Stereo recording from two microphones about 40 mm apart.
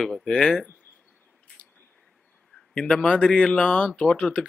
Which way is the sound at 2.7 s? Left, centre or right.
Left.